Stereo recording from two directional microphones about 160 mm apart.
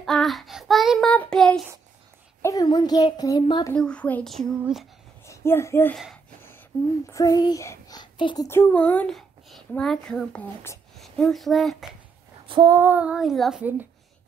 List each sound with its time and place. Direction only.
0.0 s child singing: centre (ahead or behind)
2.4 s a child's voice: 25° left (ahead or behind)
3.7 s child singing: 5° left (ahead or behind)
5.2 s speech: 15° left (ahead or behind)
7.1 s a child's voice: 20° left (ahead or behind)
8.5 s a child's voice: 15° left (ahead or behind)
12.4 s female singing: 30° right (ahead or behind)
12.7 s a child's voice: 10° right (ahead or behind)